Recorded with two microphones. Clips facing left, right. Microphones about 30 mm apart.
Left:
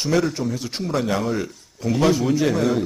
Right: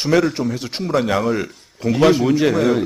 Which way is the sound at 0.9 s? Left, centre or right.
Centre.